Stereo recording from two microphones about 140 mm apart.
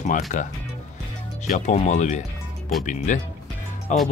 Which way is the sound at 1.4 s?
60° left (ahead or behind).